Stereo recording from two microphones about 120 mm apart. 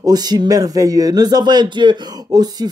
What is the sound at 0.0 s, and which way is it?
Speech, 35° right (ahead or behind).